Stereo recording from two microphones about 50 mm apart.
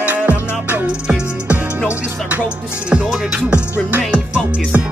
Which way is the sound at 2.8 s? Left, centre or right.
Centre.